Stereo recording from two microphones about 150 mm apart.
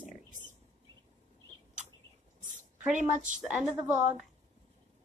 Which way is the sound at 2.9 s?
55° right (ahead or behind).